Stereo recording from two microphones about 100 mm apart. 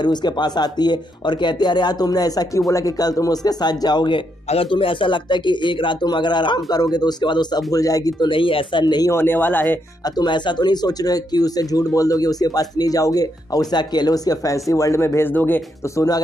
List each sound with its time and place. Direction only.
0.0 s a man's voice: 45° left (ahead or behind)
4.5 s a man's voice: 65° left (ahead or behind); by 8.3 s 35° left (ahead or behind)
8.3 s a man's voice: 60° left (ahead or behind); by 9.1 s 45° left (ahead or behind)
9.1 s speech: 20° left (ahead or behind)
10.0 s speech: 45° left (ahead or behind); by 15.6 s 20° left (ahead or behind)